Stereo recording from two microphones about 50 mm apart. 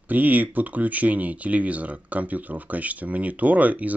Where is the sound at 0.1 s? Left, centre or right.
Right.